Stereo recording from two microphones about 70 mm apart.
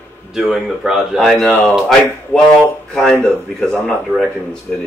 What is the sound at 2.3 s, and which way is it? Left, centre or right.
Speech, left.